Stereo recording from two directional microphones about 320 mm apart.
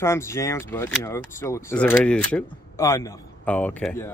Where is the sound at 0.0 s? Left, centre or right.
Centre.